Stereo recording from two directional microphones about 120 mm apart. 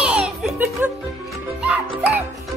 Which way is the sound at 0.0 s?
10° right (ahead or behind).